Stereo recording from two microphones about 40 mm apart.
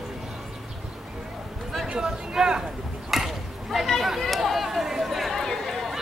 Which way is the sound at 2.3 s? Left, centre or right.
Centre.